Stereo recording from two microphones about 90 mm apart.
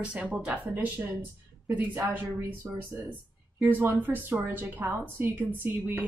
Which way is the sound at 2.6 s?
20° right (ahead or behind).